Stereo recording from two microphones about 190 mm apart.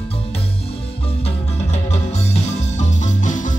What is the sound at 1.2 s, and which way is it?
Music, 35° left (ahead or behind).